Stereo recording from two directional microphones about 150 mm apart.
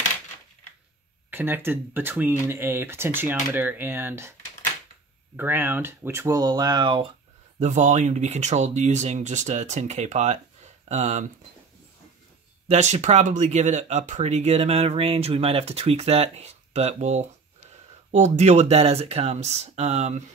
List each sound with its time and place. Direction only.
1.3 s speech: 15° right (ahead or behind)
5.3 s speech: 15° right (ahead or behind); by 7.1 s 30° right (ahead or behind)
7.5 s speech: 50° right (ahead or behind)
12.6 s speech: 50° right (ahead or behind)